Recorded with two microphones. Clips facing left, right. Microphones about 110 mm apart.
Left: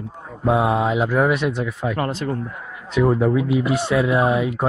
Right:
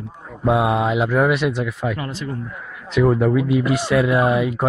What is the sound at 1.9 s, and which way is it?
Speech, 40° left (ahead or behind).